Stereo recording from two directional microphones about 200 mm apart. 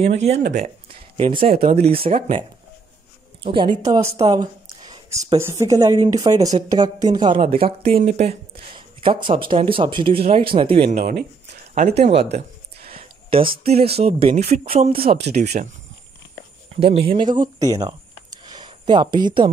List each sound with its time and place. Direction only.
0.0 s speech: 35° right (ahead or behind)
3.4 s speech: 25° right (ahead or behind)
4.2 s a sound: 20° right (ahead or behind)
5.4 s speech: 15° right (ahead or behind); by 11.1 s 35° right (ahead or behind)
12.8 s speech: 30° right (ahead or behind)
16.8 s speech: 30° right (ahead or behind)